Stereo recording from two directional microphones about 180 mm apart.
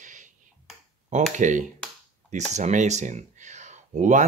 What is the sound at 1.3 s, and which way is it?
Speech, 45° right (ahead or behind).